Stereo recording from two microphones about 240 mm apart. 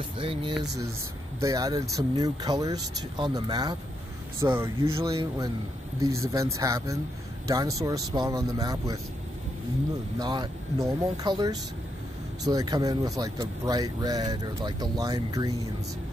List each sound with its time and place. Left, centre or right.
0.2 s speech: right
10.1 s speech: centre